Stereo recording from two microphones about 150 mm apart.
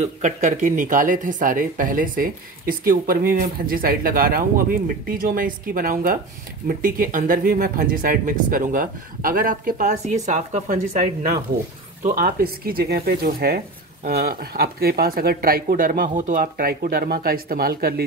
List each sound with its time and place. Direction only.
0.0 s speech: 55° right (ahead or behind)
12.0 s speech: 70° right (ahead or behind); by 18.0 s 90° right